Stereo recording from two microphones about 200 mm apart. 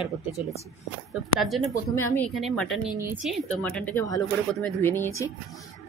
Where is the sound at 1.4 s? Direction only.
Centre (ahead or behind).